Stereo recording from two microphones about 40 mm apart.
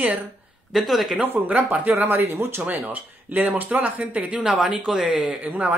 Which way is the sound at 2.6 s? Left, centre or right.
Right.